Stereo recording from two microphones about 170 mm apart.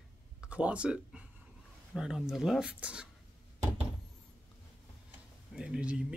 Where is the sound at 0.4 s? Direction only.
5° right (ahead or behind).